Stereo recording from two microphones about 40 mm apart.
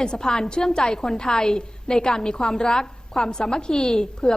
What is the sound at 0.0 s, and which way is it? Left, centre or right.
A woman's voice, centre.